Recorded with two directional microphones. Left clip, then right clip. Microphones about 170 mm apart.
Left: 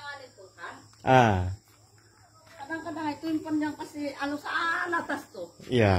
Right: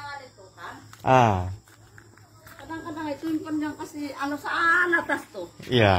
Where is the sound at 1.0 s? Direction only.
15° left (ahead or behind).